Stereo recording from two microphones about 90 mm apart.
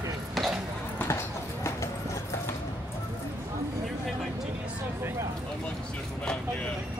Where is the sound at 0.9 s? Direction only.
30° left (ahead or behind).